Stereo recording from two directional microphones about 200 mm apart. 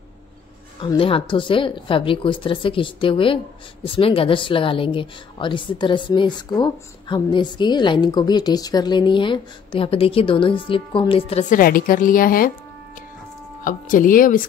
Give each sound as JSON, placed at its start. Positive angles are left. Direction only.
{"t": 0.7, "sound": "a woman's voice", "side_deg": 25}
{"t": 11.5, "sound": "a woman's voice", "side_deg": 45}
{"t": 13.7, "sound": "a woman's voice", "side_deg": 45}